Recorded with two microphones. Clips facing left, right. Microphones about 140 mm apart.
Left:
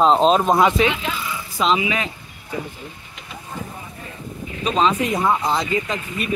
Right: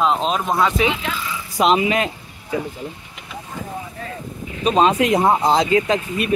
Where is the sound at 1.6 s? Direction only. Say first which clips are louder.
Right 4 dB; 45° right (ahead or behind).